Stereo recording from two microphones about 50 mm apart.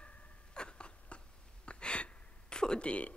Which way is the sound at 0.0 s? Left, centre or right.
Left.